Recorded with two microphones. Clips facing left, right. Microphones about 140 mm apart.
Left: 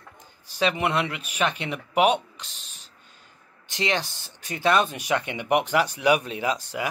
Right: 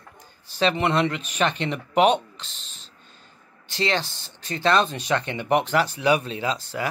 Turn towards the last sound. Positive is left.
turn(degrees=15)  # may be behind; listen again after turning